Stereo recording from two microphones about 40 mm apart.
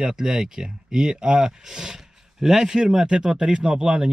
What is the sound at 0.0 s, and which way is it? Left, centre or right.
Speech, centre.